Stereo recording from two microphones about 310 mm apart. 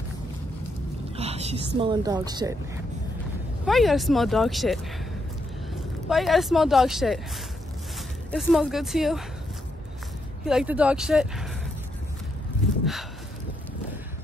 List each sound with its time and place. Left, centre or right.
1.1 s a sound: centre
1.8 s a woman's voice: centre
3.6 s speech: centre
8.3 s speech: centre
10.4 s speech: centre